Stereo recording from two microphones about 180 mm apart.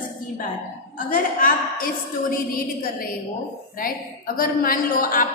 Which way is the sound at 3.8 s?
50° left (ahead or behind).